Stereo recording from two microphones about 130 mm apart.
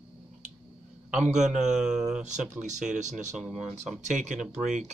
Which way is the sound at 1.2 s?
65° right (ahead or behind).